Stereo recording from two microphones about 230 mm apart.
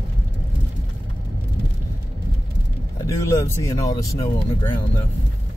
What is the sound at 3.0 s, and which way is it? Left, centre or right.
Speech, centre.